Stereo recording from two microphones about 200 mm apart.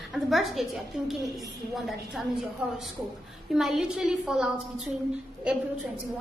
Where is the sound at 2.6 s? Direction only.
5° right (ahead or behind).